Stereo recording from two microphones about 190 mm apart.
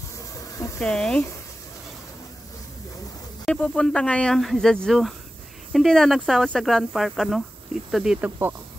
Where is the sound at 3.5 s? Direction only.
5° left (ahead or behind).